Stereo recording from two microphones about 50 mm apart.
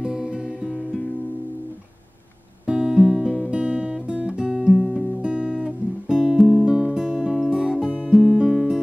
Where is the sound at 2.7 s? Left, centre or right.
Centre.